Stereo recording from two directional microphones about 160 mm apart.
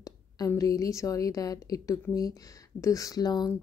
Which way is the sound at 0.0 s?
20° left (ahead or behind).